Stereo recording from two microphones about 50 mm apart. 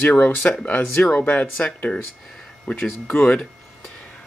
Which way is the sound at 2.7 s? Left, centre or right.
Left.